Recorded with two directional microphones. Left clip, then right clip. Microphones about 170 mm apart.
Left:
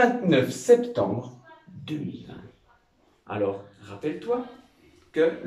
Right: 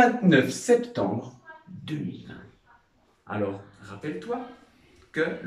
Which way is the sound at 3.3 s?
10° left (ahead or behind).